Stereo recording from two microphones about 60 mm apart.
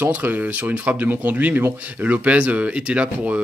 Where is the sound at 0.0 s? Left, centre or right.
Right.